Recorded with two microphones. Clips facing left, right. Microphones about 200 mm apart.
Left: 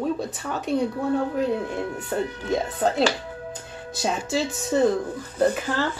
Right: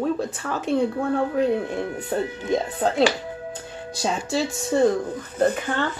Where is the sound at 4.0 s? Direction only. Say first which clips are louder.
Right 1 dB; centre (ahead or behind).